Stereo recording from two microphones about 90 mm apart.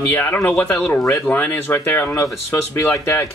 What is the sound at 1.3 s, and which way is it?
Speech, 20° left (ahead or behind).